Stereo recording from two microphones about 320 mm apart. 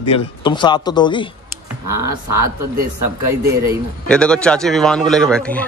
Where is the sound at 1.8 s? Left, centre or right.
Right.